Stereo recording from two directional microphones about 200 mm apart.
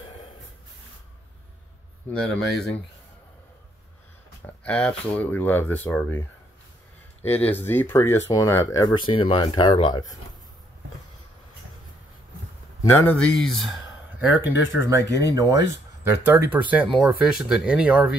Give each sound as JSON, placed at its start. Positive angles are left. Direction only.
{"t": 2.1, "sound": "speech", "side_deg": 5}
{"t": 4.6, "sound": "speech", "side_deg": 5}
{"t": 12.8, "sound": "speech", "side_deg": 10}